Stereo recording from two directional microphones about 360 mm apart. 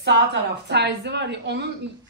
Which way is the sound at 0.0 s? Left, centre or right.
Right.